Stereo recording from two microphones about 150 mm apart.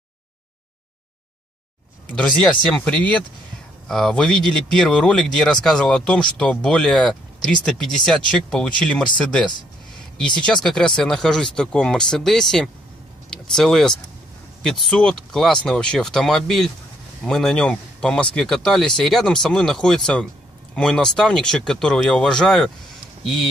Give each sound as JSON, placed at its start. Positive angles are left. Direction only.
{"t": 2.1, "sound": "speech", "side_deg": 5}